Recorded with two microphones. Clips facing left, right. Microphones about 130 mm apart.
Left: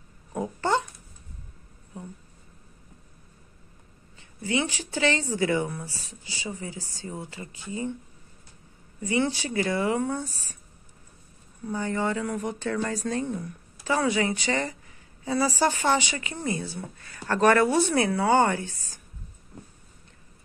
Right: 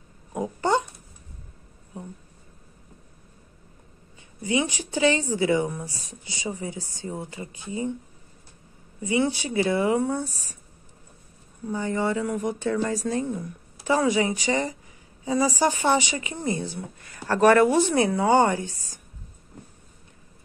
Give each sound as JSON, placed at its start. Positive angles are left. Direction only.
{"t": 0.3, "sound": "a sound", "side_deg": -15}
{"t": 4.4, "sound": "speech", "side_deg": -15}
{"t": 9.0, "sound": "speech", "side_deg": -15}
{"t": 11.6, "sound": "speech", "side_deg": -15}